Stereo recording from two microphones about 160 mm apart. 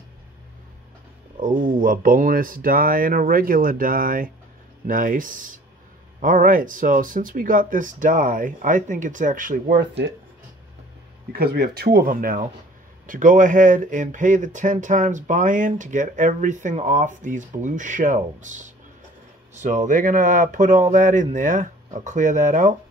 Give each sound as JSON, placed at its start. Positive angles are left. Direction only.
{"t": 1.8, "sound": "speech", "side_deg": -60}
{"t": 11.3, "sound": "speech", "side_deg": -75}